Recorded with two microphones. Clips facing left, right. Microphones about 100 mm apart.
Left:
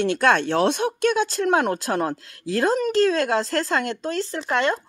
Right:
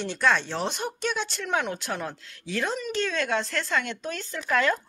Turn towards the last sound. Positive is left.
turn(degrees=25)  # may be behind; listen again after turning